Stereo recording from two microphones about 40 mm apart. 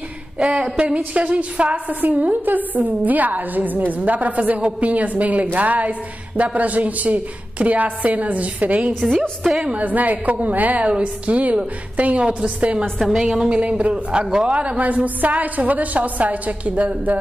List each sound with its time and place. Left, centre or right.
0.4 s a man's voice: right
0.9 s a woman's voice: right
9.4 s a woman's voice: centre
9.7 s a woman's voice: right
10.8 s a woman's voice: right
13.2 s a man's voice: centre
13.6 s a man's voice: right